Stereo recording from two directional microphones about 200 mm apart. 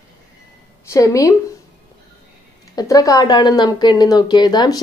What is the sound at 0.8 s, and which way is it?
Speech, 15° left (ahead or behind).